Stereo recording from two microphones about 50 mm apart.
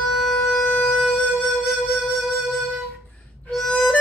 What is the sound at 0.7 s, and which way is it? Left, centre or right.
Wind instrument, left.